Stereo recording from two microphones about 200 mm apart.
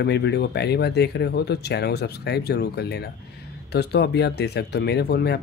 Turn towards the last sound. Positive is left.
turn(degrees=55)  # may be behind; listen again after turning